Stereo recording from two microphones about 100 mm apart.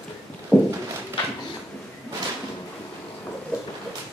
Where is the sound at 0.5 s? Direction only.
20° right (ahead or behind).